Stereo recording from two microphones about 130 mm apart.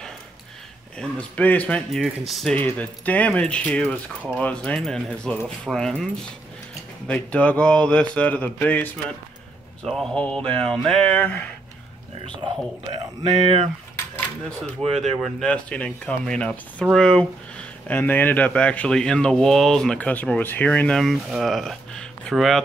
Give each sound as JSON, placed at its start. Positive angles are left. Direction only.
{"t": 0.9, "sound": "speech", "side_deg": 10}
{"t": 1.9, "sound": "speech", "side_deg": 0}
{"t": 2.5, "sound": "speech", "side_deg": 10}
{"t": 7.1, "sound": "speech", "side_deg": 10}
{"t": 12.4, "sound": "speech", "side_deg": -35}
{"t": 15.0, "sound": "speech", "side_deg": 0}
{"t": 17.8, "sound": "speech", "side_deg": 15}